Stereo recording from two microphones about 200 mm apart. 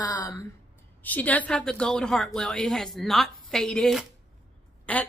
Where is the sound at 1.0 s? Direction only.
10° left (ahead or behind).